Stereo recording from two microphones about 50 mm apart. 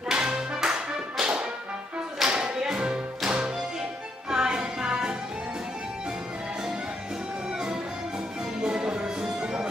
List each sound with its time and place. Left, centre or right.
0.1 s music: centre
7.5 s music: centre